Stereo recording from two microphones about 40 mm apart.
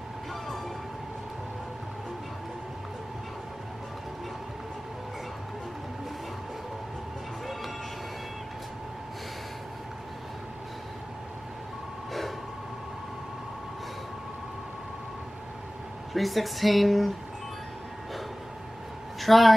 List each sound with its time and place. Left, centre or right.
16.1 s speech: centre
19.2 s speech: centre